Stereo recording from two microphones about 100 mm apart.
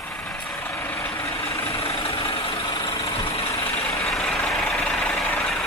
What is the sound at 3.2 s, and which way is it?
Vehicle, 75° left (ahead or behind).